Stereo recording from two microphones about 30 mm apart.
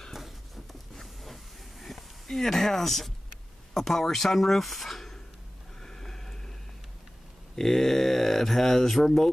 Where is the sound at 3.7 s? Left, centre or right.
Centre.